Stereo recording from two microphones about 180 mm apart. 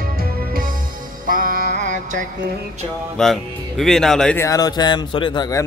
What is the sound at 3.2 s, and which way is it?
Speech, centre (ahead or behind).